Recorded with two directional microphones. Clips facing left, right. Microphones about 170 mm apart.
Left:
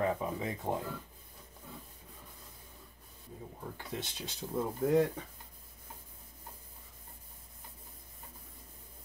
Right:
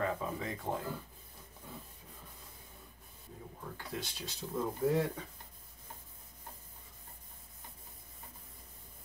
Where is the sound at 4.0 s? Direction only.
20° left (ahead or behind).